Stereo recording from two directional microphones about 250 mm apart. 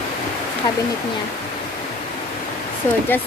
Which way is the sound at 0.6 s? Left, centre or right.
Centre.